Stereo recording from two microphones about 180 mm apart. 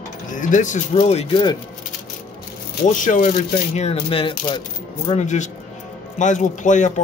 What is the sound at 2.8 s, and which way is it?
Speech, 45° left (ahead or behind).